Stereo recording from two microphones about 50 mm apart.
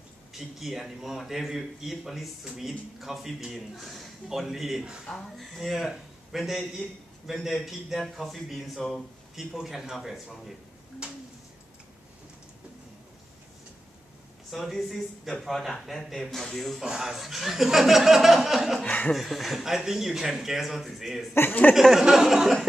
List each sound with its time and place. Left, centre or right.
0.3 s speech: centre
5.1 s speech: centre
5.4 s speech: centre
11.0 s a sound: centre
14.5 s speech: centre
16.8 s speech: centre
18.8 s speech: left
19.1 s speech: centre
21.3 s speech: left
21.9 s speech: centre